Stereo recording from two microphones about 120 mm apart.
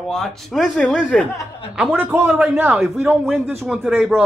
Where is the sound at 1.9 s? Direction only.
15° right (ahead or behind).